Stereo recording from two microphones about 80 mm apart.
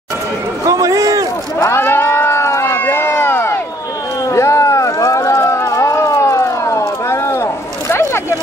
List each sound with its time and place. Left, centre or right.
0.7 s a man's voice: right
1.6 s crowd: left
4.3 s a sound: left